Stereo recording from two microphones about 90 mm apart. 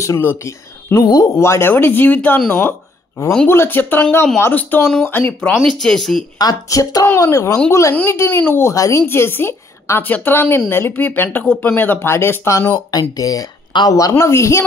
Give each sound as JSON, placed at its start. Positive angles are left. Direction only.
{"t": 0.2, "sound": "a woman's voice", "side_deg": 25}
{"t": 0.5, "sound": "a woman's voice", "side_deg": 35}
{"t": 3.4, "sound": "a woman's voice", "side_deg": 25}
{"t": 5.7, "sound": "speech", "side_deg": 5}
{"t": 6.3, "sound": "speech", "side_deg": 45}
{"t": 7.9, "sound": "a woman's voice", "side_deg": 25}
{"t": 8.7, "sound": "speech", "side_deg": 40}
{"t": 9.0, "sound": "a woman's voice", "side_deg": 25}
{"t": 14.1, "sound": "speech", "side_deg": 30}